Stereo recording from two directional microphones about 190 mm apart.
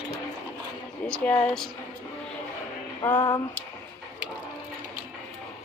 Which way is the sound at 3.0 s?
20° left (ahead or behind).